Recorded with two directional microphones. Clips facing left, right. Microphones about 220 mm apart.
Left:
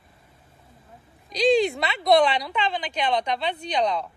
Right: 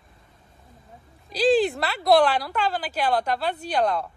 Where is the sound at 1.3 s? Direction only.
5° right (ahead or behind).